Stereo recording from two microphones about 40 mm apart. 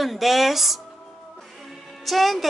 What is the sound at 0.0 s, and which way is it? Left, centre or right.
A woman's voice, centre.